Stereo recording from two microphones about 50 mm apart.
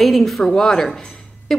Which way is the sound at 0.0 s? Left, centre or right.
Centre.